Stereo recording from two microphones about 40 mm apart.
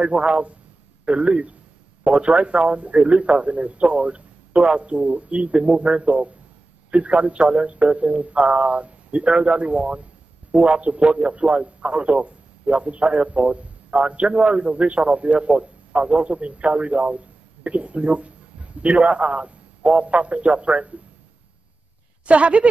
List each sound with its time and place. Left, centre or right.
0.0 s a man's voice: right
22.2 s a man's voice: right